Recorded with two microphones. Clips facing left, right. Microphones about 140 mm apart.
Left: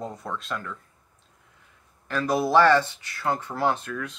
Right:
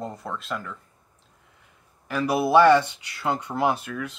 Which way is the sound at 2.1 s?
10° right (ahead or behind).